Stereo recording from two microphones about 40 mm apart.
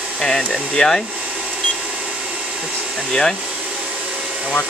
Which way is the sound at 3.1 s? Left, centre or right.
Centre.